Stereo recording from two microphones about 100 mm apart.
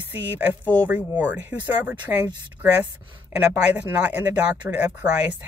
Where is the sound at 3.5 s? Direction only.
15° right (ahead or behind).